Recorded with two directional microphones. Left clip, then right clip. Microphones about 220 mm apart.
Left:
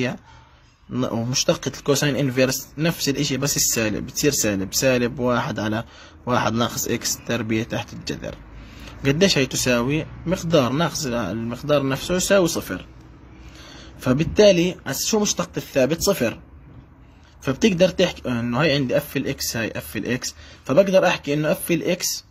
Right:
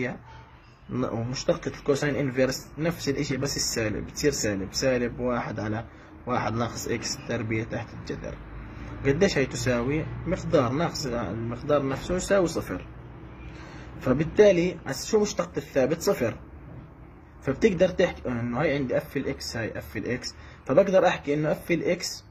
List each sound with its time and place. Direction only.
0.9 s speech: 35° left (ahead or behind)
14.0 s speech: 35° left (ahead or behind)
17.5 s speech: 35° left (ahead or behind)